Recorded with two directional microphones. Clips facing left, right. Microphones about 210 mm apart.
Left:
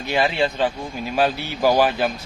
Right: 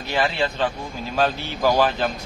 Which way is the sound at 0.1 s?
15° left (ahead or behind).